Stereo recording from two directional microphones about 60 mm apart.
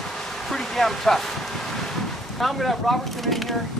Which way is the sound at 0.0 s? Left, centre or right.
Centre.